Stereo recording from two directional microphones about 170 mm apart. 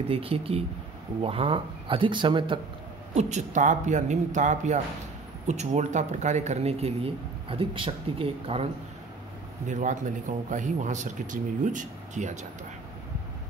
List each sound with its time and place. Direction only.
0.1 s speech: 35° right (ahead or behind)
3.2 s speech: 45° right (ahead or behind)
9.7 s speech: 45° right (ahead or behind)